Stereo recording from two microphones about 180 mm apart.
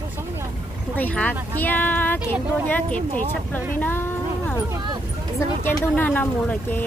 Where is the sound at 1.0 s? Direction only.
10° left (ahead or behind).